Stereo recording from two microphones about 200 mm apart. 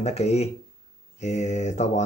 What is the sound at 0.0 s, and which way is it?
Speech, 30° left (ahead or behind).